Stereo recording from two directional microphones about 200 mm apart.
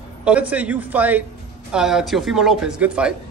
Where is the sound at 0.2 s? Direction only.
5° right (ahead or behind).